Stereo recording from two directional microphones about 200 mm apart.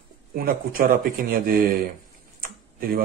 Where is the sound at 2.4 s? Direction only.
45° right (ahead or behind).